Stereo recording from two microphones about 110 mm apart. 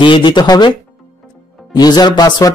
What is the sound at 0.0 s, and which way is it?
Speech, 45° left (ahead or behind).